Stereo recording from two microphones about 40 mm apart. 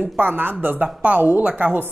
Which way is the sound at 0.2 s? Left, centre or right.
Right.